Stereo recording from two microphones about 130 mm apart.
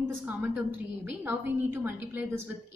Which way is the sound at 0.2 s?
10° right (ahead or behind).